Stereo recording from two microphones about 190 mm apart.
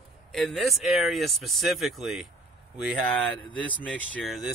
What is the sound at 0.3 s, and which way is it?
Speech, centre (ahead or behind).